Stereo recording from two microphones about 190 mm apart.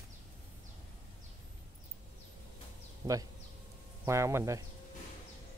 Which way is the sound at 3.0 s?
20° right (ahead or behind).